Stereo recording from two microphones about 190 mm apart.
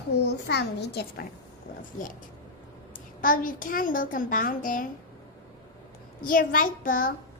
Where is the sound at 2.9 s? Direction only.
45° left (ahead or behind).